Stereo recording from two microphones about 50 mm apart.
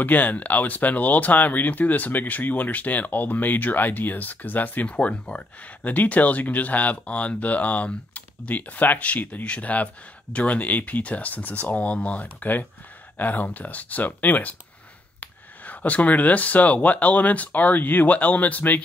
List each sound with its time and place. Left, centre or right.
0.0 s speech: left